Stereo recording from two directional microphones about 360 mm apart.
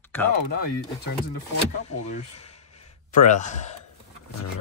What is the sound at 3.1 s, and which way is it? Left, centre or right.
Speech, left.